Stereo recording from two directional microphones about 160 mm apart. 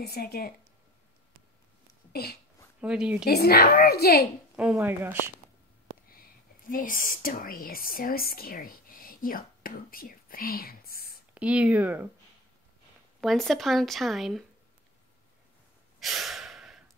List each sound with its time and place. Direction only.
0.0 s a child's voice: 75° left (ahead or behind)
2.8 s speech: 5° right (ahead or behind)
3.3 s a child's voice: 75° left (ahead or behind)
4.6 s speech: 10° right (ahead or behind)
6.7 s speech: 60° left (ahead or behind)
11.3 s speech: 10° right (ahead or behind)
13.2 s speech: centre (ahead or behind)
16.0 s gasp: centre (ahead or behind)